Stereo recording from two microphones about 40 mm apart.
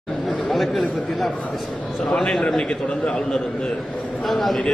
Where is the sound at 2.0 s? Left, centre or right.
Left.